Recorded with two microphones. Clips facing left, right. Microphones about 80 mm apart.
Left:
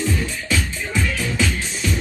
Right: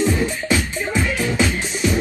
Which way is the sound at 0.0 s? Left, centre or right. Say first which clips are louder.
Right 5 dB; right.